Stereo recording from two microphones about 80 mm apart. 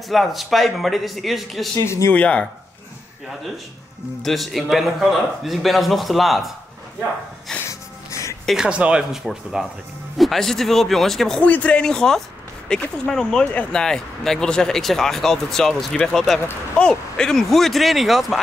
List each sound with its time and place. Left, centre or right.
0.1 s speech: centre
1.9 s speech: left
2.1 s speech: centre
4.2 s speech: centre
7.5 s music: centre
8.1 s music: left
8.6 s speech: centre
11.4 s speech: centre